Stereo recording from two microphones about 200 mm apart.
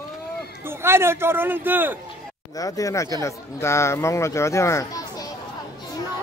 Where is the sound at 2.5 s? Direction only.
15° left (ahead or behind).